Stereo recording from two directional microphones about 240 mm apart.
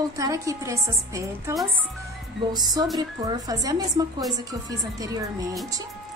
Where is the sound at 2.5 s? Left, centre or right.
Centre.